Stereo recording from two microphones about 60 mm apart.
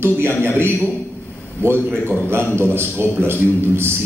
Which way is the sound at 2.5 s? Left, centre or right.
Right.